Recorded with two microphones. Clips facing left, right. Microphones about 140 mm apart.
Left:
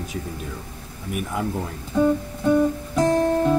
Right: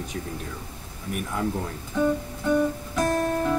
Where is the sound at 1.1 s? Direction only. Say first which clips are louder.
Left 2 dB; 5° left (ahead or behind).